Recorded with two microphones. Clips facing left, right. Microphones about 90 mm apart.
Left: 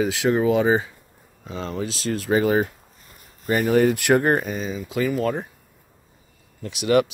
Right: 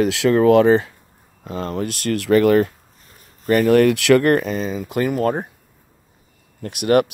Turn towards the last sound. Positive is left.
turn(degrees=-50)  # may be behind; listen again after turning